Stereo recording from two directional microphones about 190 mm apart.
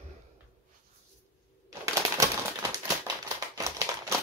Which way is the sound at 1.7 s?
15° right (ahead or behind).